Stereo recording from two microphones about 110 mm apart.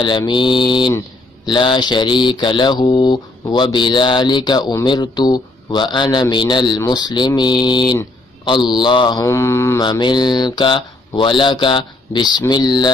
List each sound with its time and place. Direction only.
0.3 s mantra: 45° left (ahead or behind)
4.8 s speech: 40° left (ahead or behind)
9.2 s mantra: 25° left (ahead or behind)
9.8 s mantra: 45° left (ahead or behind)